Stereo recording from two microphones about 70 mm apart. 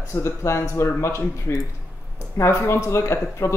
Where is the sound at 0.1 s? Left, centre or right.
Left.